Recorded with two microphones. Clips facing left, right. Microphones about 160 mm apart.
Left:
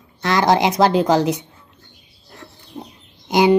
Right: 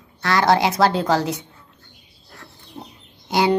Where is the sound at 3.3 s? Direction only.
15° left (ahead or behind).